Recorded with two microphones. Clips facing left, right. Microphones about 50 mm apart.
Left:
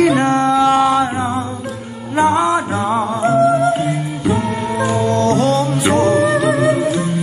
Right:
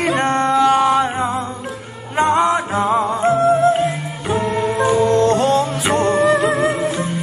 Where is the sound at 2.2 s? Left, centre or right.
Right; by 5.1 s centre.